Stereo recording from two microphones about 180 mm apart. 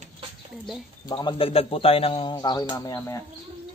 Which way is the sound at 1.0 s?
25° left (ahead or behind).